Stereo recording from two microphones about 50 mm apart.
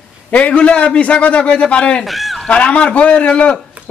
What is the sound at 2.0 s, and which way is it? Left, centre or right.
Speech, centre.